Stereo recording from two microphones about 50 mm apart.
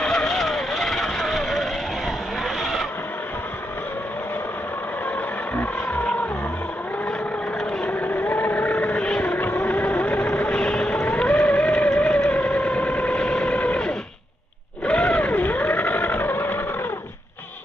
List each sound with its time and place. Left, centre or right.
0.0 s vehicle: centre
7.8 s vehicle: left; by 11.1 s centre
11.1 s a sound: left
11.9 s vehicle: centre
12.3 s vehicle: left
14.9 s vehicle: left